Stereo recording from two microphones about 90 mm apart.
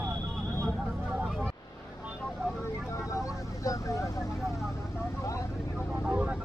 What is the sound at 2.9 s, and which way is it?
Vehicle, 35° left (ahead or behind).